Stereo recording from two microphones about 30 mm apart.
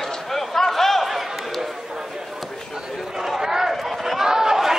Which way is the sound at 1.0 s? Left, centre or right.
Centre.